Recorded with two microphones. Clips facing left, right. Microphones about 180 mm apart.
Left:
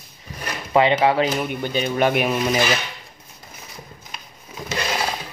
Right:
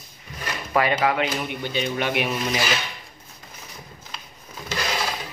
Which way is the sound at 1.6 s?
45° left (ahead or behind).